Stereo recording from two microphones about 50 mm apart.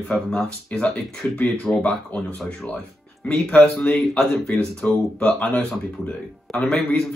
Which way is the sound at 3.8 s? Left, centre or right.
Left.